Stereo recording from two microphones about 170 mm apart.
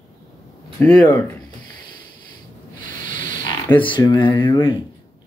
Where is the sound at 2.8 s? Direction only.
55° right (ahead or behind).